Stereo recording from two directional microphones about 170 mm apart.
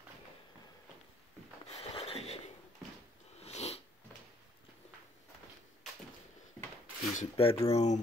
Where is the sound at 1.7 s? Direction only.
35° left (ahead or behind).